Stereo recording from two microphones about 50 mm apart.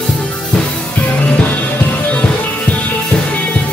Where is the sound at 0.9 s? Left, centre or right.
Left.